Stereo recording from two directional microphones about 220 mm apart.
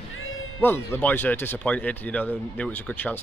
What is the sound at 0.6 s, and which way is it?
Speech, 10° left (ahead or behind).